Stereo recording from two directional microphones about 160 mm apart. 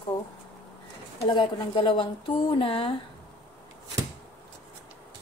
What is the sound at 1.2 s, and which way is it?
Speech, 30° left (ahead or behind).